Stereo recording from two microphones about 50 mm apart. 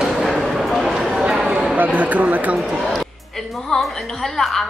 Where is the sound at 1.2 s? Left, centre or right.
Right.